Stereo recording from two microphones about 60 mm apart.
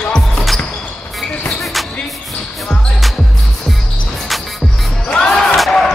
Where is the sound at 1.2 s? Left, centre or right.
Centre.